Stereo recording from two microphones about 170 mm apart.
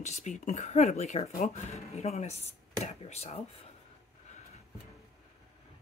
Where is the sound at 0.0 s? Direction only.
40° left (ahead or behind).